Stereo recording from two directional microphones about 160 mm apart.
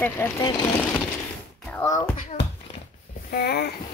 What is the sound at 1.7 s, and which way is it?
Speech, 15° left (ahead or behind).